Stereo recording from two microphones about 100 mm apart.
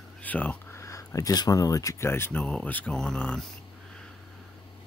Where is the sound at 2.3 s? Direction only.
10° left (ahead or behind).